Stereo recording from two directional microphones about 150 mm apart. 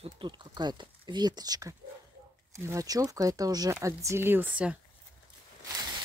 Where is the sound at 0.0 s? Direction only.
30° right (ahead or behind); by 4.7 s 10° right (ahead or behind).